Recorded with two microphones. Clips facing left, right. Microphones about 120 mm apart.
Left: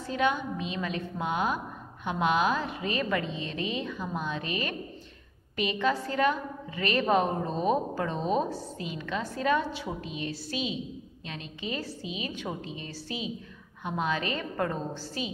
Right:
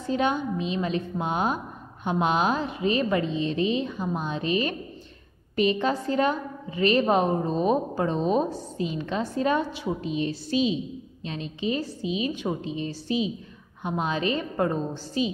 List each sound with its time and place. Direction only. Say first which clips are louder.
0.1 s a woman's voice: right 3 dB; 25° right (ahead or behind)